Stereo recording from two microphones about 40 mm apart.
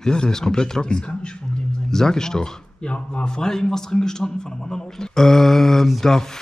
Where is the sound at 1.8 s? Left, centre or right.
Centre.